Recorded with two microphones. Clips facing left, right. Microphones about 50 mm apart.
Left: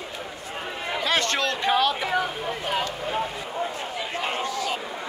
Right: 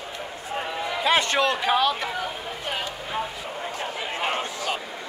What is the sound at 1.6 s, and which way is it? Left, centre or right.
Speech, centre.